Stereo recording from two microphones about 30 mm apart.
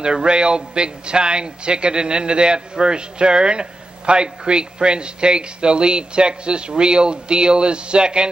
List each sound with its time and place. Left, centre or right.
0.0 s a man's voice: right